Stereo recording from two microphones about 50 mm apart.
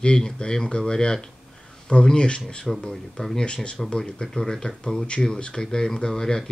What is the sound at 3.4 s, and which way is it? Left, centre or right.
Speech, centre.